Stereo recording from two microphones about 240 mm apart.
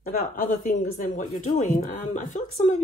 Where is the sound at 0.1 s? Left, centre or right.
Left.